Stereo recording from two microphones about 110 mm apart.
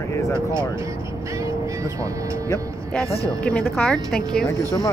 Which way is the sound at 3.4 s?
10° left (ahead or behind).